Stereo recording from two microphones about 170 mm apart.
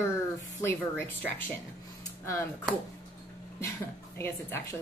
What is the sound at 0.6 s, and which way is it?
Speech, 15° left (ahead or behind).